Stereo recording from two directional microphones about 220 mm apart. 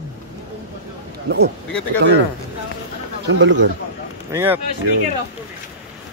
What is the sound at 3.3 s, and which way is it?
Speech, 55° right (ahead or behind).